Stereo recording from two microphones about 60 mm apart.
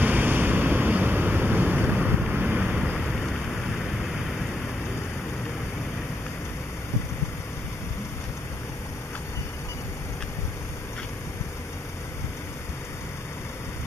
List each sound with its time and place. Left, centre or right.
0.0 s vehicle: right
2.6 s vehicle: centre
3.0 s thunder: centre